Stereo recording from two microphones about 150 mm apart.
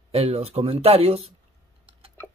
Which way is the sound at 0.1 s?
45° right (ahead or behind).